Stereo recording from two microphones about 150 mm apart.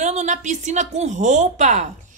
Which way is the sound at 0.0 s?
50° right (ahead or behind).